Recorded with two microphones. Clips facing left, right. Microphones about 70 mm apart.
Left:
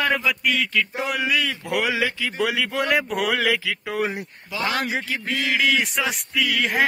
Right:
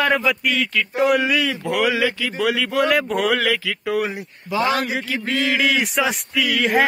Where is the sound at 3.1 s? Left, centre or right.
Centre.